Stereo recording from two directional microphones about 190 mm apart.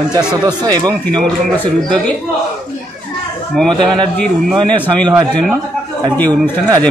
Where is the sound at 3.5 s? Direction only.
5° left (ahead or behind).